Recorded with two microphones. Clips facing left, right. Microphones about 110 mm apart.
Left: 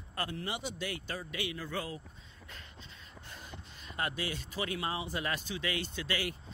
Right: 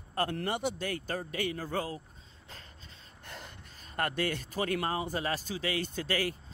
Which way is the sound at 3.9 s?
55° right (ahead or behind).